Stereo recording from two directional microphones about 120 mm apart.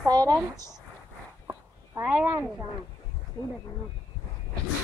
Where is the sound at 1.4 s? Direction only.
20° right (ahead or behind).